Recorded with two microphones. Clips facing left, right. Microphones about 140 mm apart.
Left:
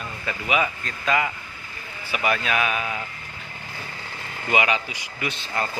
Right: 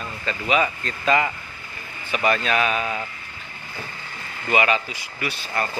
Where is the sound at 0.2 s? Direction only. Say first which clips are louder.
Right 2 dB; 10° left (ahead or behind).